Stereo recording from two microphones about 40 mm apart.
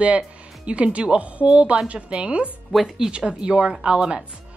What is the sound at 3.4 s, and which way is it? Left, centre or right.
Speech, right.